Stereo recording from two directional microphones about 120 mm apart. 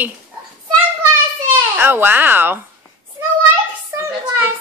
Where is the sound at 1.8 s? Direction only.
15° right (ahead or behind).